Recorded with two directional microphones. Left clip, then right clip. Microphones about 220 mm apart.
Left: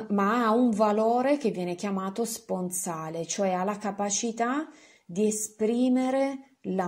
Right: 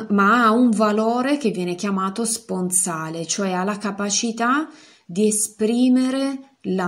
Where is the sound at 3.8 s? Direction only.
20° right (ahead or behind).